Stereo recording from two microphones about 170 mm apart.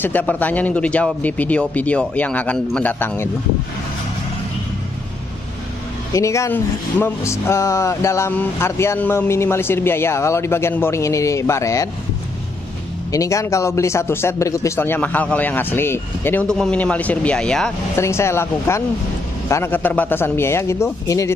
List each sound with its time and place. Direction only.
0.0 s speech: 10° left (ahead or behind)
6.1 s speech: 20° left (ahead or behind)
13.1 s speech: 20° left (ahead or behind)
17.9 s speech: 15° left (ahead or behind)